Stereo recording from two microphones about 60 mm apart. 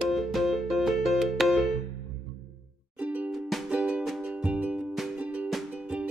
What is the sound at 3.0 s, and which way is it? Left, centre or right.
Music, right.